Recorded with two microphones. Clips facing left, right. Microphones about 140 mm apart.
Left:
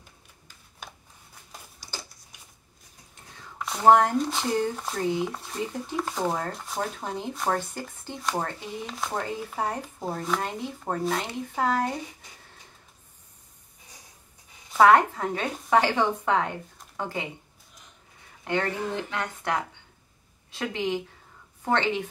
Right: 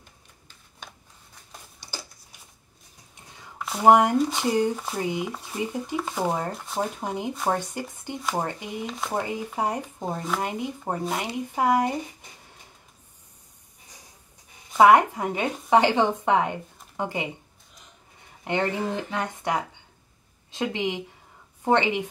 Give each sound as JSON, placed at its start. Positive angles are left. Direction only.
{"t": 3.5, "sound": "a sound", "side_deg": 0}
{"t": 3.8, "sound": "speech", "side_deg": -15}
{"t": 6.2, "sound": "speech", "side_deg": -10}
{"t": 6.5, "sound": "speech", "side_deg": 0}
{"t": 6.8, "sound": "speech", "side_deg": -15}
{"t": 10.1, "sound": "speech", "side_deg": 0}
{"t": 10.4, "sound": "speech", "side_deg": -15}
{"t": 14.8, "sound": "speech", "side_deg": -15}
{"t": 18.4, "sound": "speech", "side_deg": -20}